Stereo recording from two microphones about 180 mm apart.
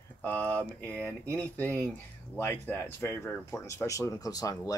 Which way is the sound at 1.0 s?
15° right (ahead or behind).